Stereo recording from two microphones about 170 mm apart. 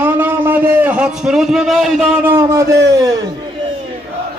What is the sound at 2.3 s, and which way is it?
Speech, 15° right (ahead or behind).